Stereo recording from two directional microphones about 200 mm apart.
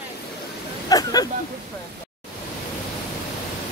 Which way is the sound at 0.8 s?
20° left (ahead or behind).